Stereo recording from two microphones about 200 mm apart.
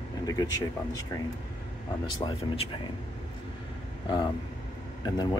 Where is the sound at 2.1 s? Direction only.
25° left (ahead or behind).